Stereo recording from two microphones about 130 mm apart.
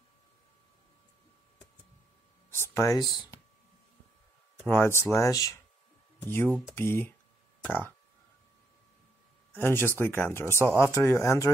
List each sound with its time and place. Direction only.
2.5 s speech: 20° left (ahead or behind)
4.6 s speech: 15° left (ahead or behind)
9.5 s speech: 15° left (ahead or behind)